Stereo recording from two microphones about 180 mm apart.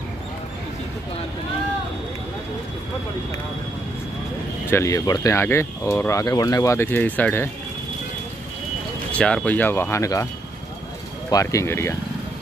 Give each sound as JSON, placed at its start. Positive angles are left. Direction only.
{"t": 4.6, "sound": "speech", "side_deg": 15}
{"t": 9.1, "sound": "speech", "side_deg": 5}
{"t": 11.2, "sound": "speech", "side_deg": 20}